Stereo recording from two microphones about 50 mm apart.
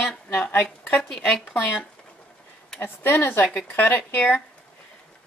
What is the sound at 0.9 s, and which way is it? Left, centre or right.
Speech, centre.